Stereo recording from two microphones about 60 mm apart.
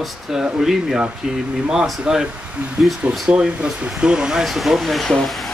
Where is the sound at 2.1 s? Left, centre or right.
Centre.